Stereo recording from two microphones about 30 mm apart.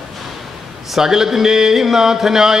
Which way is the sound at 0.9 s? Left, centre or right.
Centre.